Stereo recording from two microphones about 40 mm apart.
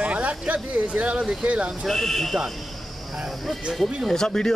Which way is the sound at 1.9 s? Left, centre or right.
Centre.